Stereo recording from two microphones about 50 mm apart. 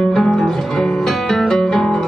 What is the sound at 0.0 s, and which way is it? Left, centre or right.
Guitar, centre.